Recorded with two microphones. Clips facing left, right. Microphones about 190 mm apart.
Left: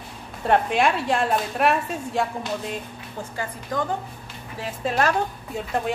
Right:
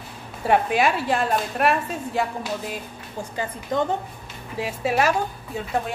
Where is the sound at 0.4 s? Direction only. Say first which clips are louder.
Even; 5° right (ahead or behind).